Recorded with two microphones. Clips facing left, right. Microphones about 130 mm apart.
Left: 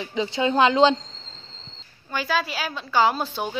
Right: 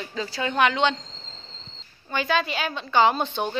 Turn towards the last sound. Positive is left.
turn(degrees=5)  # may be behind; listen again after turning